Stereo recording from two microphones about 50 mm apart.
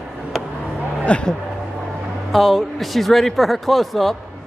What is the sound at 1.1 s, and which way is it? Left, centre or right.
Speech, left.